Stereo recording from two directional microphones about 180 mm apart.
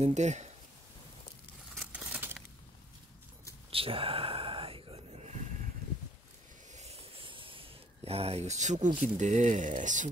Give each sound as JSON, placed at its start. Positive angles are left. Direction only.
{"t": 0.0, "sound": "speech", "side_deg": -40}
{"t": 1.8, "sound": "crumpling", "side_deg": -5}
{"t": 3.7, "sound": "whispering", "side_deg": -30}
{"t": 6.7, "sound": "a sound", "side_deg": -35}